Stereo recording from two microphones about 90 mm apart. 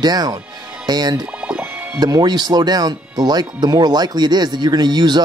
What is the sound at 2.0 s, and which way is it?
Speech, 50° right (ahead or behind).